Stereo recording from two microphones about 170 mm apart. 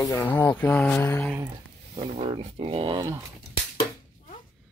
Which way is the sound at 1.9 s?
30° right (ahead or behind).